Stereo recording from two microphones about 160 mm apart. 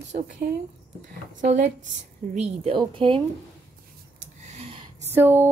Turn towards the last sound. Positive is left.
turn(degrees=-15)  # may be behind; listen again after turning